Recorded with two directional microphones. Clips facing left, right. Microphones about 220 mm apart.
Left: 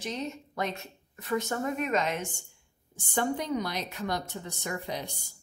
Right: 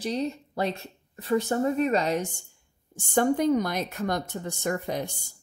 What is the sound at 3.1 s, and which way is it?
Speech, 50° right (ahead or behind).